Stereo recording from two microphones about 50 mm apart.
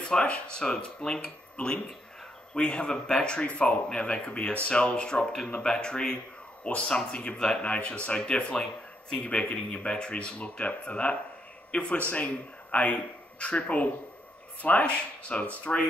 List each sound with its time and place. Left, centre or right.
0.0 s speech: centre